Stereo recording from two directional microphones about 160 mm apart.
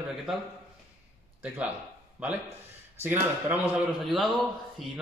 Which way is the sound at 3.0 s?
15° right (ahead or behind).